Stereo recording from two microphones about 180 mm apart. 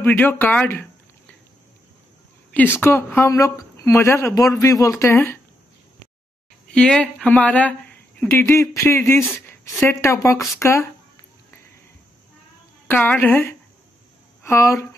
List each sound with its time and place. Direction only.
0.0 s speech: 10° left (ahead or behind)
2.8 s speech: 15° left (ahead or behind)
6.7 s speech: 5° left (ahead or behind)
12.8 s speech: 10° left (ahead or behind)